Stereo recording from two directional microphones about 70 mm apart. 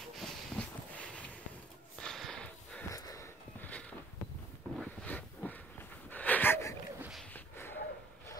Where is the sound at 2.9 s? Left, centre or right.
Left.